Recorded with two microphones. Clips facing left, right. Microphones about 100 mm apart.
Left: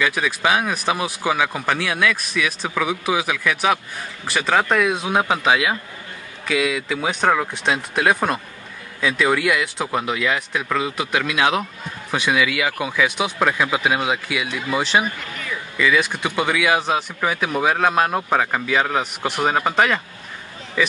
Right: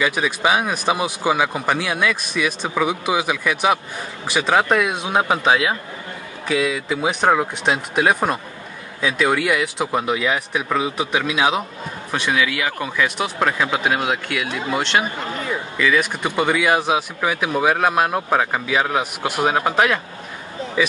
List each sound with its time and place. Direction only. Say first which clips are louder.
0.2 s speech: right 1 dB; 10° right (ahead or behind)
6.4 s a man's voice: right 1 dB; 30° right (ahead or behind)
6.9 s speech: right 3 dB; 5° right (ahead or behind)
12.1 s speech: left 1 dB; 5° left (ahead or behind)
14.5 s speech: right 1 dB; 25° right (ahead or behind)
14.8 s speech: left 1 dB; 5° left (ahead or behind)
15.0 s speech: right 4 dB; 30° right (ahead or behind)
15.8 s speech: even; centre (ahead or behind)